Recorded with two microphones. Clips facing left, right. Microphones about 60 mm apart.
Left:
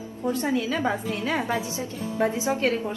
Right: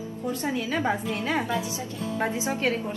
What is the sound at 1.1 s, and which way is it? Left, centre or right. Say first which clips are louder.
A woman's voice: left 1 dB; right.